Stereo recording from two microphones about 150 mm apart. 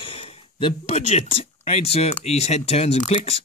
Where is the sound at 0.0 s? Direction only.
35° left (ahead or behind).